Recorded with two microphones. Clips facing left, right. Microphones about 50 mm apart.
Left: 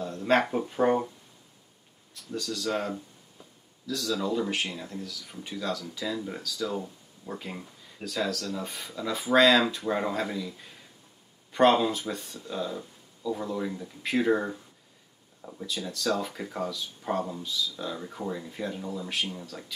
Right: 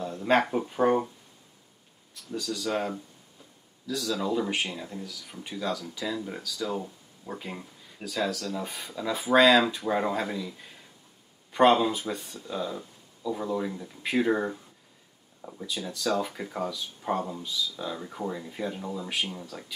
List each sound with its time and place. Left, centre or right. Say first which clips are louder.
0.0 s speech: even; centre
2.3 s speech: right 1 dB; centre
11.5 s speech: right 1 dB; centre